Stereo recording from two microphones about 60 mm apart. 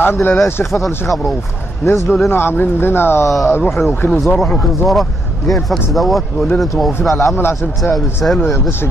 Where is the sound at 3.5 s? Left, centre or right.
Left.